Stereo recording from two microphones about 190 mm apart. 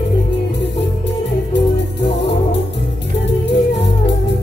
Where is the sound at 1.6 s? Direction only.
65° left (ahead or behind).